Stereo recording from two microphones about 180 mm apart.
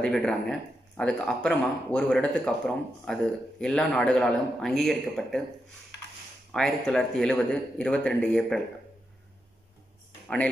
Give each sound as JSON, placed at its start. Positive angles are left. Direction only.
{"t": 0.0, "sound": "a man's voice", "side_deg": 5}
{"t": 6.5, "sound": "a man's voice", "side_deg": 5}
{"t": 10.2, "sound": "speech", "side_deg": 5}